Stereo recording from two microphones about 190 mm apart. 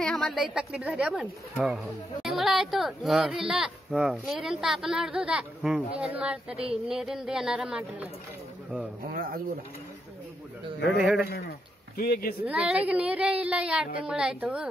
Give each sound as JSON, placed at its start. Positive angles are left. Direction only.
{"t": 0.0, "sound": "speech", "side_deg": 5}
{"t": 9.0, "sound": "speech", "side_deg": -50}
{"t": 11.0, "sound": "speech", "side_deg": 0}
{"t": 11.2, "sound": "speech", "side_deg": 55}
{"t": 12.4, "sound": "speech", "side_deg": -5}